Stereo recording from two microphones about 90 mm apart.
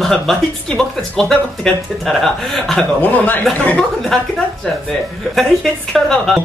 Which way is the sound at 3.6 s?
5° left (ahead or behind).